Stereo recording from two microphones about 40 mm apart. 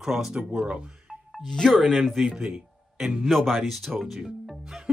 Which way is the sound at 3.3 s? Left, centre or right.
Centre.